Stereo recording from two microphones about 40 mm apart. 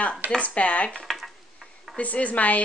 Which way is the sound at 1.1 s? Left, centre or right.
Centre.